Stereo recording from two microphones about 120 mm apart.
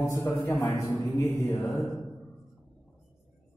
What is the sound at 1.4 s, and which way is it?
Mantra, centre (ahead or behind).